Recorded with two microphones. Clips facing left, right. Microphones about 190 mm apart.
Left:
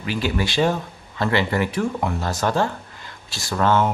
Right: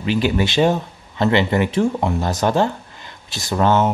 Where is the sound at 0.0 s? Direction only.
20° right (ahead or behind).